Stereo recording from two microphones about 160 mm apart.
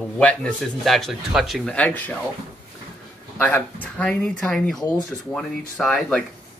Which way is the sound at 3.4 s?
10° left (ahead or behind).